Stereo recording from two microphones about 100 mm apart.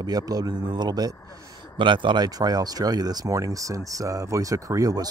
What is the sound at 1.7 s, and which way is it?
Speech, 55° right (ahead or behind).